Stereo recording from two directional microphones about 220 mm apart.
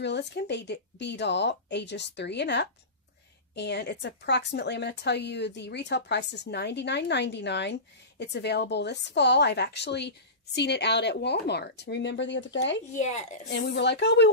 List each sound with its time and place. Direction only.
0.0 s a woman's voice: 50° left (ahead or behind)
12.9 s speech: 30° left (ahead or behind)
13.5 s a woman's voice: 50° left (ahead or behind)